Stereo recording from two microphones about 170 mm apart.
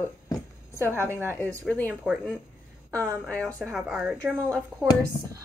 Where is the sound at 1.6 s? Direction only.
10° left (ahead or behind).